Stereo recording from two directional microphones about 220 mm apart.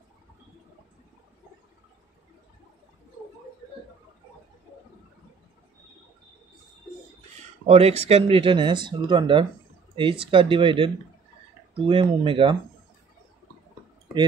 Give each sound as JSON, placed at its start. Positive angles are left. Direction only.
{"t": 7.6, "sound": "speech", "side_deg": -30}